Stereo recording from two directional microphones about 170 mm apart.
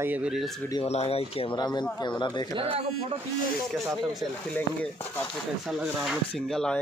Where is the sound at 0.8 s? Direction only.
35° left (ahead or behind).